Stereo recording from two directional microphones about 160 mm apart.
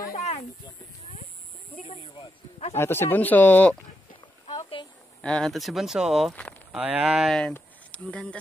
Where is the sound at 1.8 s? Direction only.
40° left (ahead or behind).